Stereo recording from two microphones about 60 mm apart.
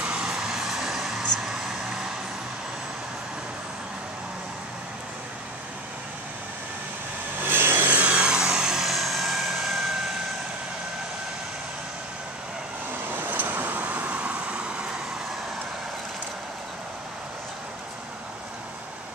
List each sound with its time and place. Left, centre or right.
0.0 s vehicle: centre
7.4 s vehicle: right; by 9.9 s centre
13.1 s vehicle: right